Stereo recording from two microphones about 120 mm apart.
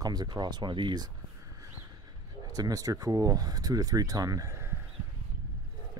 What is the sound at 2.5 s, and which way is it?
Speech, 30° right (ahead or behind).